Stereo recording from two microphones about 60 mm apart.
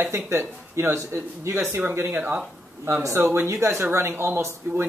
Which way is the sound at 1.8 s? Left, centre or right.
Right.